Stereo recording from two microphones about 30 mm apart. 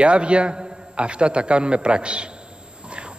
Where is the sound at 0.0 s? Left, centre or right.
Right.